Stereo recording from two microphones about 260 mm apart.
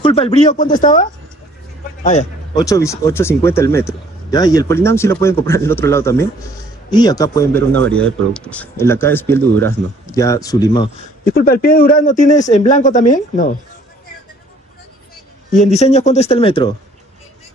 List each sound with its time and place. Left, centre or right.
0.0 s speech: left
2.5 s a man's voice: centre
11.2 s speech: left
15.5 s speech: left